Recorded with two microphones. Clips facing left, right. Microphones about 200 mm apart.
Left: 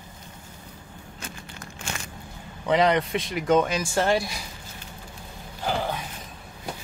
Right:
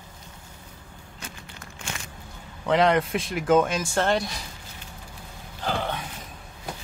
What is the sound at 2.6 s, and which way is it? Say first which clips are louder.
Speech: even; centre (ahead or behind).